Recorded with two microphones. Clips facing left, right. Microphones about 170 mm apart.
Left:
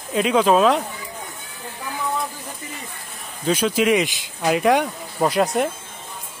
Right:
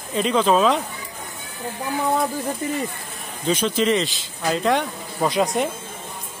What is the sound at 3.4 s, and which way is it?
Speech, 10° left (ahead or behind).